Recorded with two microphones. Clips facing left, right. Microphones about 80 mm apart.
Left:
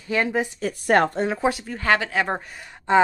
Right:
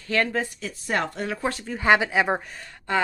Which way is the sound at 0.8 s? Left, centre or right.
Left.